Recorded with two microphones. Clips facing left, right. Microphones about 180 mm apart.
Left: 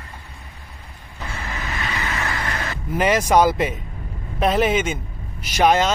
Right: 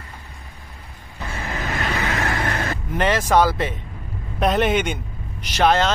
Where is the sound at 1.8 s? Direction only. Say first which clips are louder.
Right 3 dB; 50° right (ahead or behind).